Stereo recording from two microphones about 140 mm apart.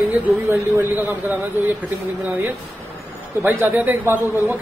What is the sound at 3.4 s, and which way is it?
Speech, 15° right (ahead or behind).